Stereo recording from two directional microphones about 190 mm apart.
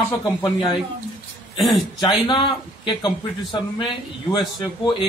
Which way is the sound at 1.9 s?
25° left (ahead or behind).